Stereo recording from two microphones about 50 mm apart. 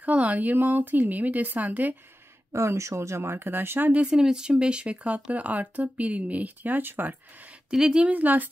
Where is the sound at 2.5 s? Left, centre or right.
Right.